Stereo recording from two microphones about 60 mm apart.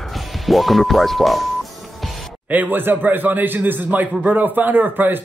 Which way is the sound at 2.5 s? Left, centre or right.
Right.